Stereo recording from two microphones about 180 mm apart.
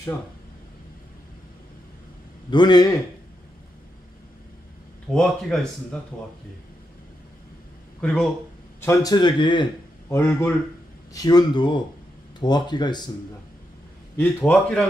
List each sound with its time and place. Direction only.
2.5 s speech: 25° left (ahead or behind)
5.1 s speech: 5° left (ahead or behind)
8.0 s speech: 5° left (ahead or behind)
8.8 s speech: 20° left (ahead or behind)
10.0 s speech: 10° left (ahead or behind)
14.1 s speech: 5° left (ahead or behind)